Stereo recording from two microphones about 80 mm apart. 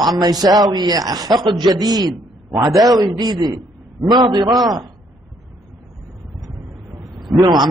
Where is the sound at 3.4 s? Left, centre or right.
Right.